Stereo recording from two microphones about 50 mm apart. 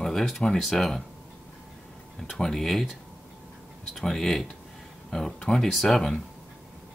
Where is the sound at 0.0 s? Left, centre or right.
Centre.